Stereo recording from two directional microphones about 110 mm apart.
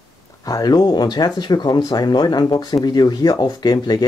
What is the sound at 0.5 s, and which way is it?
Speech, 35° left (ahead or behind).